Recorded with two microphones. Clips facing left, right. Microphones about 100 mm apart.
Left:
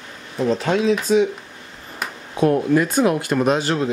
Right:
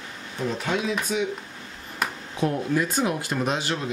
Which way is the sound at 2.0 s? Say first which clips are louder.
Right 1 dB; centre (ahead or behind).